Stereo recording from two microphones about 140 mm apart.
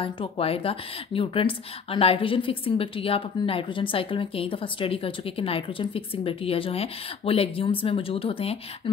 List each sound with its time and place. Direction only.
0.0 s a woman's voice: 40° left (ahead or behind)